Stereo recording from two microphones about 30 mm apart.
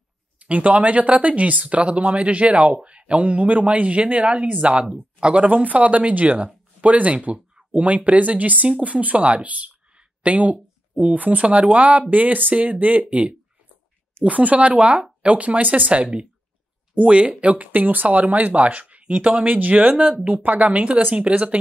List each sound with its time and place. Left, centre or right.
0.4 s speech: right
3.7 s speech: right
5.5 s speech: right
9.9 s a sound: right
11.4 s speech: right
12.1 s speech: right
13.1 s speech: right
19.0 s speech: right
19.3 s speech: right
19.9 s speech: right
20.2 s speech: right
21.1 s speech: right